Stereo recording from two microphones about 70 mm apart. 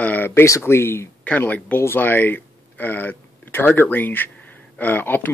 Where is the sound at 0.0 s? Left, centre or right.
Left.